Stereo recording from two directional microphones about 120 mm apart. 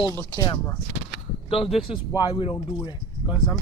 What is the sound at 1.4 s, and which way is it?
Speech, 50° left (ahead or behind).